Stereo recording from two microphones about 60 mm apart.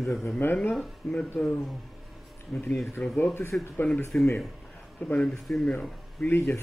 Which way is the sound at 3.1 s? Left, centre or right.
Left.